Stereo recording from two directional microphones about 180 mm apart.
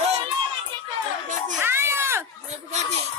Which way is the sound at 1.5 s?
15° right (ahead or behind).